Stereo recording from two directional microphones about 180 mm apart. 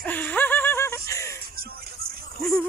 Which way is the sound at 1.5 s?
55° right (ahead or behind).